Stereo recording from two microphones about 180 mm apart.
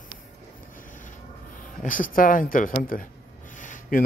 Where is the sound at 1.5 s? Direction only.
50° left (ahead or behind).